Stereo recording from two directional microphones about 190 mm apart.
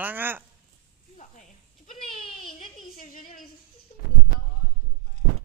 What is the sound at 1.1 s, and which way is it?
Snake, 40° left (ahead or behind).